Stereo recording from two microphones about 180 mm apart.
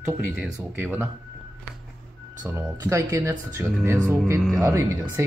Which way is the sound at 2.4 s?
15° right (ahead or behind).